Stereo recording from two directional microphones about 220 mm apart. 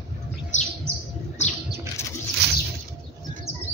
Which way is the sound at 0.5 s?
35° left (ahead or behind).